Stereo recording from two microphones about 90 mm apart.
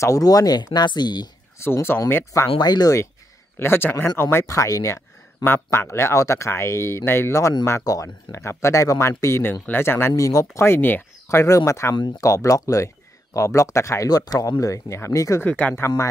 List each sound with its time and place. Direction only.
0.0 s speech: 40° left (ahead or behind)
1.6 s speech: 25° left (ahead or behind)
2.6 s speech: 50° left (ahead or behind)
3.5 s speech: 25° left (ahead or behind); by 14.5 s 45° left (ahead or behind)
14.6 s speech: 35° left (ahead or behind)
15.4 s speech: 15° left (ahead or behind)